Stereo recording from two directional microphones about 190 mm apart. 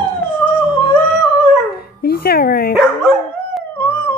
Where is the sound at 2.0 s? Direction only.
55° left (ahead or behind).